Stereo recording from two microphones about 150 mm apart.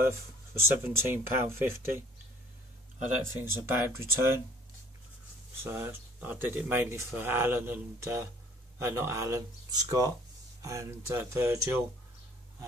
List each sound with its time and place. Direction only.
0.6 s speech: 15° right (ahead or behind)
3.3 s speech: 15° right (ahead or behind)
5.6 s speech: 15° right (ahead or behind)